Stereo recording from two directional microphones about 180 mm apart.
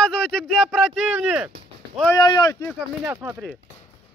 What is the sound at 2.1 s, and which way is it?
Speech, 25° left (ahead or behind).